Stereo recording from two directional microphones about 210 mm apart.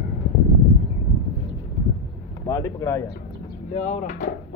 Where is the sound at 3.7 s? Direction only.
35° left (ahead or behind).